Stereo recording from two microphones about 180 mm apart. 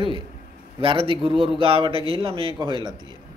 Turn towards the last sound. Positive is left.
turn(degrees=-25)  # may be behind; listen again after turning